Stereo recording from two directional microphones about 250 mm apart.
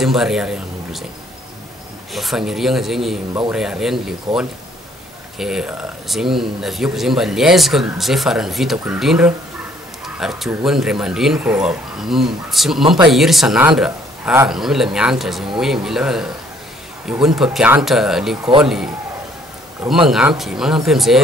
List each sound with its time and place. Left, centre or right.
0.0 s a man's voice: centre
2.1 s speech: centre
5.4 s speech: centre
12.8 s speech: centre
13.1 s speech: centre
20.1 s speech: centre